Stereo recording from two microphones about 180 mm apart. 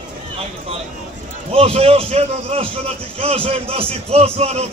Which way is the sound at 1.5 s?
35° right (ahead or behind).